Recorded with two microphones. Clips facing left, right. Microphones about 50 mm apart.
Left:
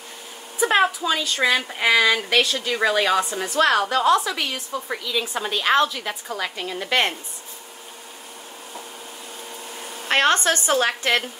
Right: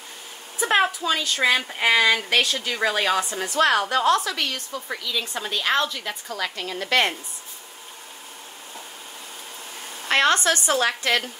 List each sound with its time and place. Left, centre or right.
0.6 s speech: centre
10.1 s a woman's voice: left